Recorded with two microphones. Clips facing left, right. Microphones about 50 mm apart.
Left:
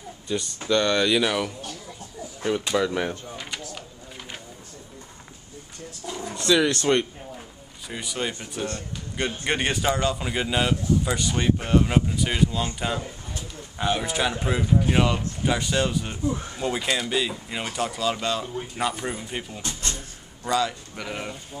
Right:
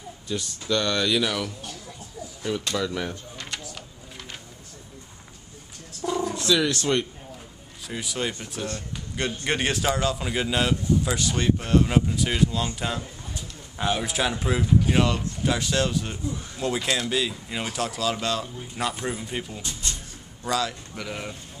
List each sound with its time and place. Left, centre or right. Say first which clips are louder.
0.3 s speech: left 3 dB; centre
2.5 s speech: left 4 dB; centre
3.3 s a sound: left 1 dB; centre
6.2 s bird: right 1 dB; centre
7.9 s a man's voice: even; centre
19.6 s a sound: left 2 dB; left
20.4 s speech: left 2 dB; centre